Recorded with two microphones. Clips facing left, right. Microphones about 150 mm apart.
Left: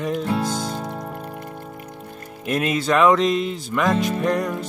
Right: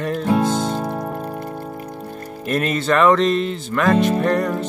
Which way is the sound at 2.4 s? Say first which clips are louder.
Right 1 dB; 5° left (ahead or behind).